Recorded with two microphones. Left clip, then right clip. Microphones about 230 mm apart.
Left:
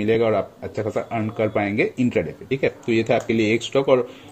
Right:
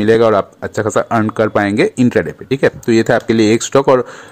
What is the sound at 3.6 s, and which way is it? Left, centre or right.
Speech, right.